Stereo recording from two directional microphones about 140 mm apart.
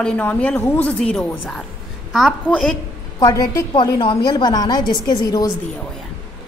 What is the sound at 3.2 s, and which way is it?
A woman's voice, 25° left (ahead or behind).